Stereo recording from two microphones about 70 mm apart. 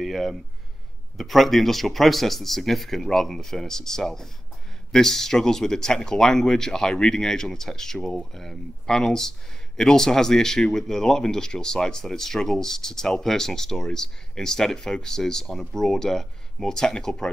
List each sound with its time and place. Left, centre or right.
0.0 s speech: centre